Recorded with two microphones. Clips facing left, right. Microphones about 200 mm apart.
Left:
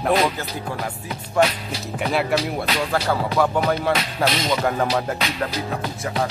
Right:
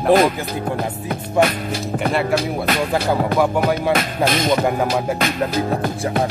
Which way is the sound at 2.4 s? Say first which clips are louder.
Right 3 dB; 50° right (ahead or behind).